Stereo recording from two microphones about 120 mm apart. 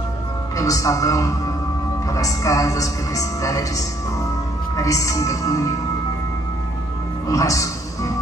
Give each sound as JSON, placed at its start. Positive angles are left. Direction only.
{"t": 0.6, "sound": "a woman's voice", "side_deg": 30}
{"t": 7.2, "sound": "speech", "side_deg": 30}